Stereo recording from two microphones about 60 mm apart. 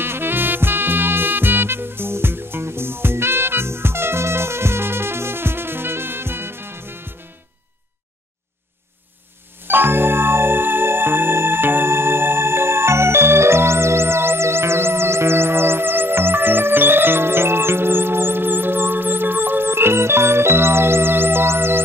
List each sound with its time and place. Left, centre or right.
0.0 s music: right
9.7 s music: right